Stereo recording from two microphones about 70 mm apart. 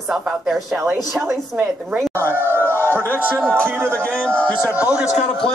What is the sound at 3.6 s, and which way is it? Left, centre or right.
Speech, right.